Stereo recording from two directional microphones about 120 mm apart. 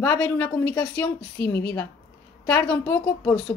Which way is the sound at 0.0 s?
10° left (ahead or behind).